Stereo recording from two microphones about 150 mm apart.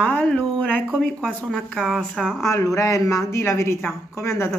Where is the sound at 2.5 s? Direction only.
20° left (ahead or behind).